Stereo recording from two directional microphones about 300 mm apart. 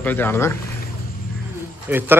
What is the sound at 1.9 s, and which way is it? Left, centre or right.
Speech, centre.